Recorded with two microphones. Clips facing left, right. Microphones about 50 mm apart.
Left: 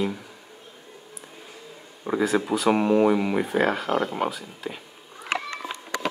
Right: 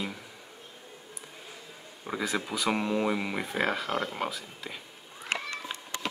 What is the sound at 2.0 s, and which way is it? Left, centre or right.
Speech, centre.